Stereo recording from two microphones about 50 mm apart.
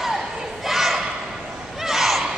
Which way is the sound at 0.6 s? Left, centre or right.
Centre.